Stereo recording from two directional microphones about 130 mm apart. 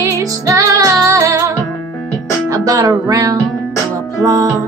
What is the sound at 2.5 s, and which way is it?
Music, 30° right (ahead or behind).